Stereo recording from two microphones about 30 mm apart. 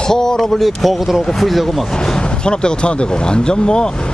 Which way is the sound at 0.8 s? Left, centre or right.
Centre.